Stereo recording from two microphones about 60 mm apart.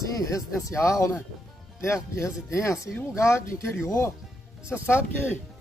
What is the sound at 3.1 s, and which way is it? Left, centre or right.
Speech, left.